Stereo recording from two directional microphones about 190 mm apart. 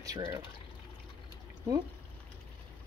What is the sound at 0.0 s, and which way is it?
Speech, 20° right (ahead or behind).